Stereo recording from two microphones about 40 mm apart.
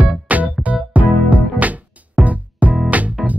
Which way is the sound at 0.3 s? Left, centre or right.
Right.